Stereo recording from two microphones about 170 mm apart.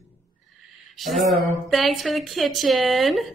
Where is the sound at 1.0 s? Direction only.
Centre (ahead or behind).